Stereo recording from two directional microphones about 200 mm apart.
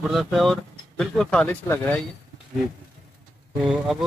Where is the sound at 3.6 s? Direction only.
5° right (ahead or behind).